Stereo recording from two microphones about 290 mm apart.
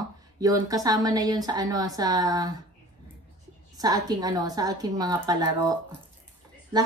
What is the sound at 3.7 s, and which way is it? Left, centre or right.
A woman's voice, centre.